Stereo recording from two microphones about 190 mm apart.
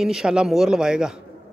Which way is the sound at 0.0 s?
5° right (ahead or behind).